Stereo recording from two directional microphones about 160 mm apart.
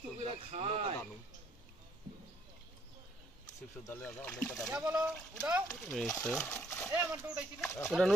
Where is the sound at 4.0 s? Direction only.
10° left (ahead or behind).